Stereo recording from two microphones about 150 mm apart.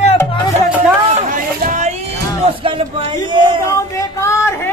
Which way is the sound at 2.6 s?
40° right (ahead or behind).